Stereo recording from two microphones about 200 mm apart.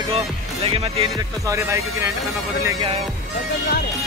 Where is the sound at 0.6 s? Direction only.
30° right (ahead or behind).